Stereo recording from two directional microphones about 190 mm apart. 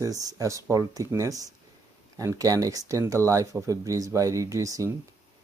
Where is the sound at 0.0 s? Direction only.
15° right (ahead or behind).